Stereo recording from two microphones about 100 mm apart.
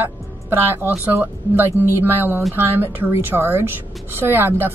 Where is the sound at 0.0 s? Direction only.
20° right (ahead or behind).